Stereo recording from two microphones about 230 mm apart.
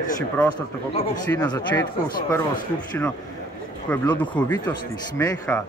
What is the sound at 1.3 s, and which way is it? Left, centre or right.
Speech, centre.